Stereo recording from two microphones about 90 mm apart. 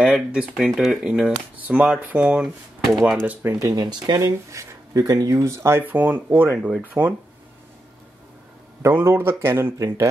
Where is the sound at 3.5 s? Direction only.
45° right (ahead or behind).